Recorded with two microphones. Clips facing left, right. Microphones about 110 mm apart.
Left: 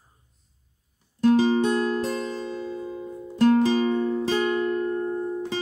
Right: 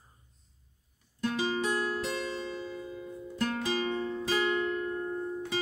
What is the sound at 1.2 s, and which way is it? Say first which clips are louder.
Music: left 11 dB; 35° left (ahead or behind).